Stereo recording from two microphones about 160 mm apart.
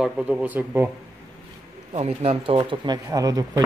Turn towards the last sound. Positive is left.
turn(degrees=-20)  # may be behind; listen again after turning